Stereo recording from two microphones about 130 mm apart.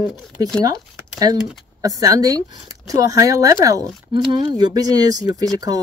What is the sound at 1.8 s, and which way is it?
Speech, 25° right (ahead or behind).